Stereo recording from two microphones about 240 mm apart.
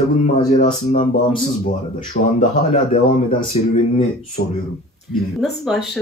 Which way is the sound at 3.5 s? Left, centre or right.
Left.